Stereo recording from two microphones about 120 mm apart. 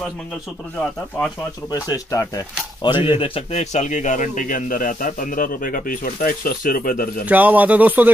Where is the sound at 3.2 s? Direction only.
55° left (ahead or behind); by 5.3 s 90° left.